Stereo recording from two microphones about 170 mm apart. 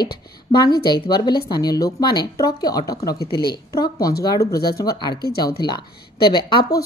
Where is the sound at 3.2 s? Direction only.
65° left (ahead or behind).